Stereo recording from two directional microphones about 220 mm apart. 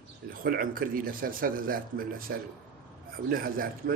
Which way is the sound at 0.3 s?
40° right (ahead or behind).